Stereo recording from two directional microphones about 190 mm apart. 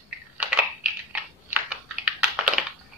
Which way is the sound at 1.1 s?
5° right (ahead or behind).